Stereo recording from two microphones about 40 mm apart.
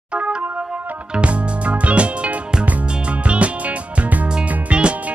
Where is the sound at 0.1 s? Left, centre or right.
Right.